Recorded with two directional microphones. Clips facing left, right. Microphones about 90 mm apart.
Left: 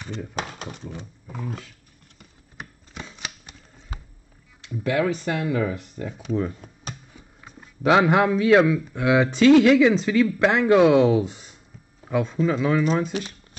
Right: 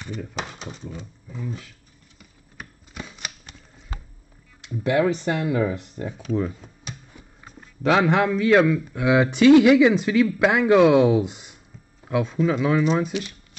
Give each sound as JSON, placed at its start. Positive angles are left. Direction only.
{"t": 0.4, "sound": "speech", "side_deg": 50}
{"t": 1.2, "sound": "roaring cats", "side_deg": 70}
{"t": 2.9, "sound": "shuffling cards", "side_deg": -5}
{"t": 4.8, "sound": "speech", "side_deg": -25}
{"t": 6.1, "sound": "speech", "side_deg": 0}
{"t": 12.1, "sound": "speech", "side_deg": -5}